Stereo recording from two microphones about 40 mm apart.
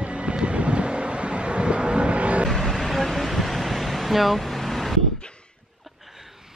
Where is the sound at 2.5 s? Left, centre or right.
Centre.